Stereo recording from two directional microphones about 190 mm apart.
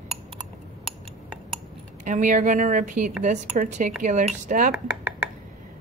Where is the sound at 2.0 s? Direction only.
40° right (ahead or behind).